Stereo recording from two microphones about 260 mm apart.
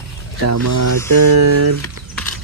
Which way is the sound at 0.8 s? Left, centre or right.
Right.